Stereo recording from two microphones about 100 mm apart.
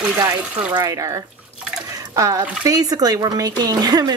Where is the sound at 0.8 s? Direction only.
35° right (ahead or behind).